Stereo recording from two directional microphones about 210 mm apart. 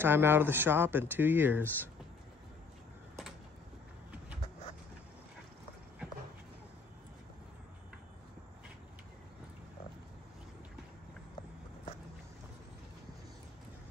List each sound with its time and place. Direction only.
0.0 s speech: 10° right (ahead or behind)